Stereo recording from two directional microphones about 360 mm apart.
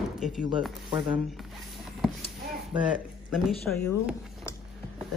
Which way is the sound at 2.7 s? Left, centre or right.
Centre.